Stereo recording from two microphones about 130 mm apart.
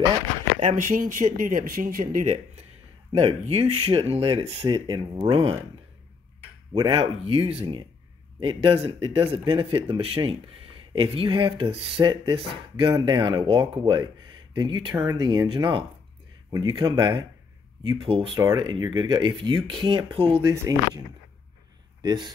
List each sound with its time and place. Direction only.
0.6 s speech: 70° right (ahead or behind)
3.1 s speech: 45° right (ahead or behind)
6.7 s speech: 35° right (ahead or behind)
18.4 s speech: 30° right (ahead or behind)
20.4 s speech: 25° right (ahead or behind)
22.0 s speech: 35° right (ahead or behind)